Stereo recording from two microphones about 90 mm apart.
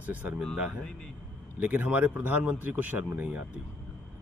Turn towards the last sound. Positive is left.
turn(degrees=-20)  # may be behind; listen again after turning